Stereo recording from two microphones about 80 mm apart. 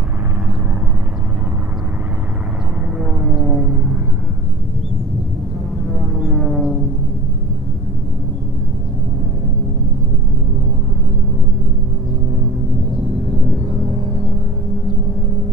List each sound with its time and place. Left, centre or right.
3.0 s vehicle: centre
3.6 s vehicle: centre
6.3 s music: centre